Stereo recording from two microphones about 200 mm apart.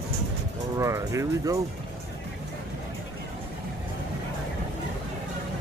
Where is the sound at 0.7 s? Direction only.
15° right (ahead or behind).